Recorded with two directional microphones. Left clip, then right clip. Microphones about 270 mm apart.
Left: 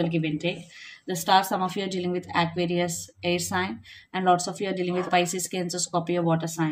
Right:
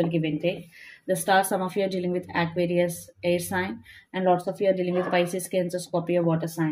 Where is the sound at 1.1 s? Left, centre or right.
Centre.